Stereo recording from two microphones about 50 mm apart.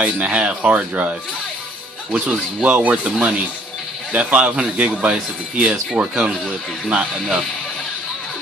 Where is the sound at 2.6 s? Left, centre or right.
Right.